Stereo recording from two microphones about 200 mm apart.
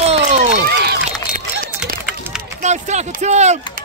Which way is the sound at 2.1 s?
5° right (ahead or behind).